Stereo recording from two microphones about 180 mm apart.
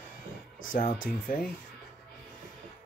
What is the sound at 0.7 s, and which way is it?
Speech, 50° left (ahead or behind).